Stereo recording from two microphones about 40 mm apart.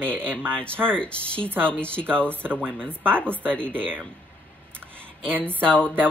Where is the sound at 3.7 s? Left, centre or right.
Right.